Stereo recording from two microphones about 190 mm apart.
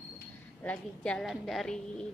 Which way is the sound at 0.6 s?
5° left (ahead or behind).